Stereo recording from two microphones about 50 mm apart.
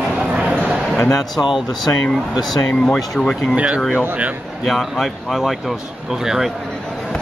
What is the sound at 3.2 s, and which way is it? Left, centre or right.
Speech, centre.